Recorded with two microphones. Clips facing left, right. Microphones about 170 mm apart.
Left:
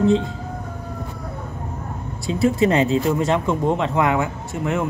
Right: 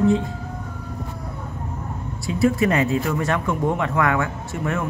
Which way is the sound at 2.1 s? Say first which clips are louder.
Left 1 dB; 20° left (ahead or behind).